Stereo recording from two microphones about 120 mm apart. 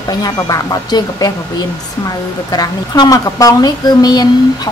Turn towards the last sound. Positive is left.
turn(degrees=35)  # may be behind; listen again after turning